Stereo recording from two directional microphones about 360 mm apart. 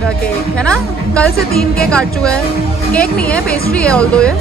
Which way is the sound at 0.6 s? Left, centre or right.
Centre.